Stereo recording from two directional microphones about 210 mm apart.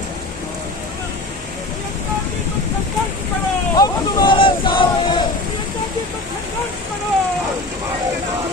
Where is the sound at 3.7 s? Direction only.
20° left (ahead or behind).